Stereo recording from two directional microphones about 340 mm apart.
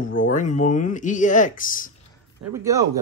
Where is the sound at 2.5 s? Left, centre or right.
Centre.